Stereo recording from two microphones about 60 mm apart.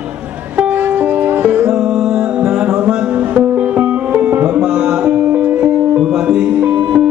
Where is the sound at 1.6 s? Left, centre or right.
Centre.